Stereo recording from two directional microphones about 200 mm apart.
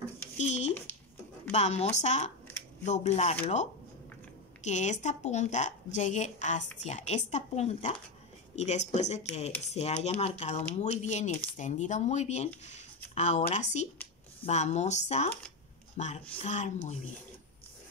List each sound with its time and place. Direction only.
0.4 s a sound: 35° left (ahead or behind)
1.5 s speech: 35° left (ahead or behind)
4.6 s speech: 35° left (ahead or behind)